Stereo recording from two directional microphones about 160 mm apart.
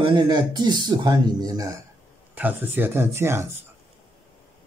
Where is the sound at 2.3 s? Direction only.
10° right (ahead or behind).